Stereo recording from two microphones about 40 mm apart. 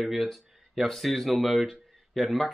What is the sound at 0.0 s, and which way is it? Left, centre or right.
A man's voice, centre.